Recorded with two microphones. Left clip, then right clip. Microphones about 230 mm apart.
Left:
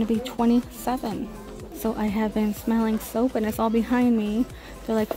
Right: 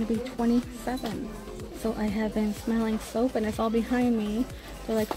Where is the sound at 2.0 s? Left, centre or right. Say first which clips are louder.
Left 4 dB; centre.